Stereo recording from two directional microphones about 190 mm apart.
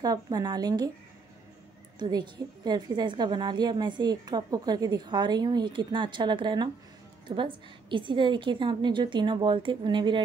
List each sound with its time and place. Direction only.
0.0 s a woman's voice: 20° right (ahead or behind)
2.0 s a woman's voice: 20° right (ahead or behind)